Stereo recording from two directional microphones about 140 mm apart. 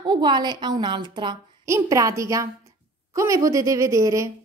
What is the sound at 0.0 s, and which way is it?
A woman's voice, 35° right (ahead or behind).